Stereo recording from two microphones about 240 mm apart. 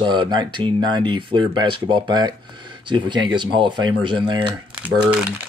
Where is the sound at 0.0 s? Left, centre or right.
Centre.